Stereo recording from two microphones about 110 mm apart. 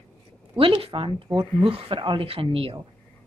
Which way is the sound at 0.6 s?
55° right (ahead or behind).